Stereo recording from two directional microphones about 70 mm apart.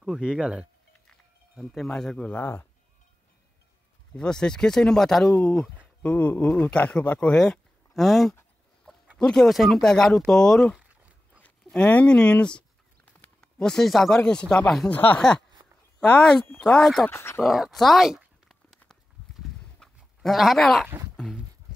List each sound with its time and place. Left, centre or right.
0.2 s speech: centre
1.6 s speech: centre; by 2.7 s left
4.1 s speech: centre
6.0 s speech: left
7.9 s speech: centre
10.8 s a sound: centre
11.4 s a sound: centre
13.4 s speech: centre
14.9 s speech: left
15.1 s speech: centre
17.1 s speech: left
17.4 s a sound: centre
19.8 s goat: centre
20.2 s speech: centre